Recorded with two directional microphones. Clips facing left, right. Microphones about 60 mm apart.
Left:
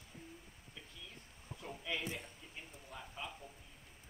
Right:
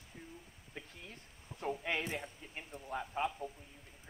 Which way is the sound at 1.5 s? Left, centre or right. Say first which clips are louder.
Right 6 dB; right.